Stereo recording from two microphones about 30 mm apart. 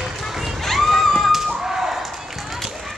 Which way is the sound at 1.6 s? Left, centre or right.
Centre.